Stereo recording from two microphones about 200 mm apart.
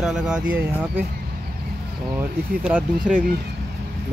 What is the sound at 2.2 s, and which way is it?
Speech, 5° right (ahead or behind).